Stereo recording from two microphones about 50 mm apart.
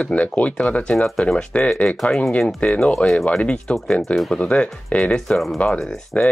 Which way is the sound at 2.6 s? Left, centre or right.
Left.